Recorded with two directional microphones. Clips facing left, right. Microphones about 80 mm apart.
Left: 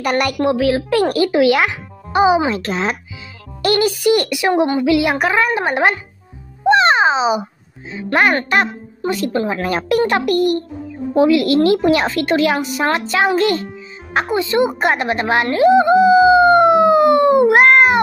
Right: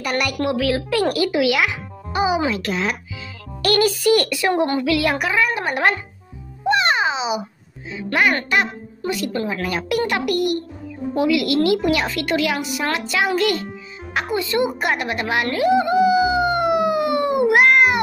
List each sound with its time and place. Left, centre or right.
0.1 s speech: left
0.4 s speech: left
3.6 s a child's voice: left
5.2 s speech: left
5.5 s a child's voice: left
6.6 s babbling: left
7.9 s music: left
8.5 s speech: left
14.1 s music: left